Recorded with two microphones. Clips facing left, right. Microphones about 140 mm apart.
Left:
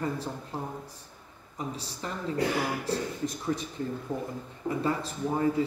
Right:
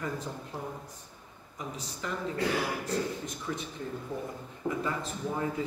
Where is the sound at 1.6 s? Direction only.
35° left (ahead or behind).